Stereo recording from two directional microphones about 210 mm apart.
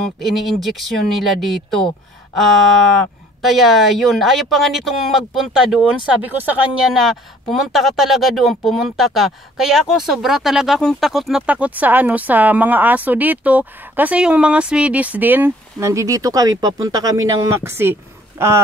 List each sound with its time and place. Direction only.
0.2 s speech: centre (ahead or behind)
3.4 s speech: centre (ahead or behind)